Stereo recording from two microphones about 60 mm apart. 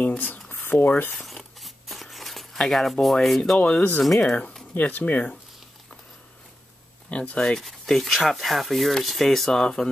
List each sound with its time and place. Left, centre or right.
0.0 s a sound: left
0.5 s speech: left
1.1 s tearing: centre
3.2 s speech: centre
3.5 s speech: left
7.1 s speech: left